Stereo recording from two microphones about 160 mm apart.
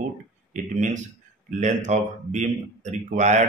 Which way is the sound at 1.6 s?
45° right (ahead or behind).